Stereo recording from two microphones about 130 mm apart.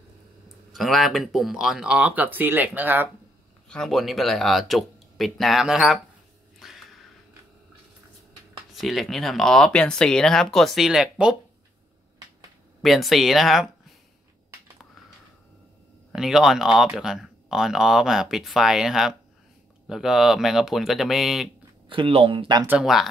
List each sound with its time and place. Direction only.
0.7 s speech: centre (ahead or behind)
3.6 s speech: 5° left (ahead or behind)
6.6 s a sound: centre (ahead or behind)
8.7 s speech: centre (ahead or behind)
12.8 s speech: centre (ahead or behind)
16.1 s speech: 5° right (ahead or behind)
21.8 s speech: 40° right (ahead or behind)
22.7 s speech: 5° right (ahead or behind)